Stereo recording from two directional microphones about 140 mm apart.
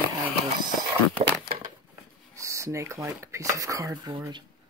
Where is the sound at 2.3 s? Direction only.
20° right (ahead or behind).